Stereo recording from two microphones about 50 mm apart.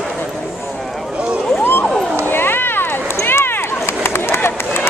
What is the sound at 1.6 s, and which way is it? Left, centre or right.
Vehicle, left.